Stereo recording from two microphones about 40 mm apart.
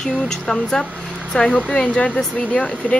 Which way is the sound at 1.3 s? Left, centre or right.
Left.